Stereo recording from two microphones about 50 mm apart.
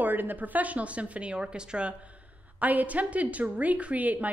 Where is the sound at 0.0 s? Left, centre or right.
Right.